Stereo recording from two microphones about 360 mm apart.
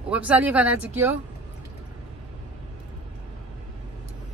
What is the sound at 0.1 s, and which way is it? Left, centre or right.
Speech, centre.